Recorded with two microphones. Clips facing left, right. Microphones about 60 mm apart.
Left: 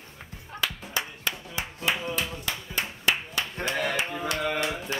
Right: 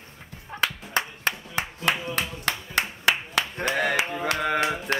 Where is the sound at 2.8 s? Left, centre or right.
Right.